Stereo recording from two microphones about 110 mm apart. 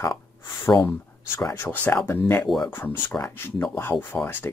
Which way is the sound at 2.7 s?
20° left (ahead or behind).